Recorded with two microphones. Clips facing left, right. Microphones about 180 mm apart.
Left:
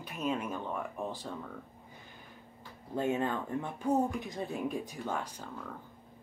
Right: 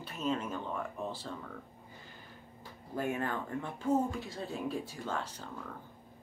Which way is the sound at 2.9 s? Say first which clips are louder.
Left 3 dB; 20° left (ahead or behind).